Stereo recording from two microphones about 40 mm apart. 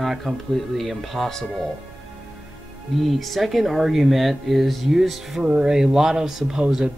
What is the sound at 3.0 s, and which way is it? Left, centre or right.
Speech, centre.